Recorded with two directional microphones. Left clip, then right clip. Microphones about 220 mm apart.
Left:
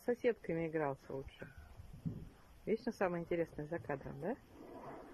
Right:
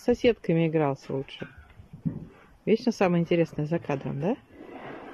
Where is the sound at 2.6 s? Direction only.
5° right (ahead or behind).